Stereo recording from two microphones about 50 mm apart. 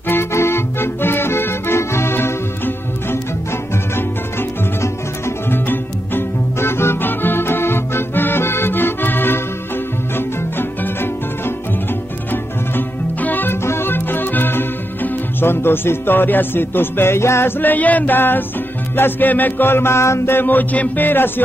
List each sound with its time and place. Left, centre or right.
0.1 s music: left
5.5 s music: left
13.6 s music: left
20.3 s music: left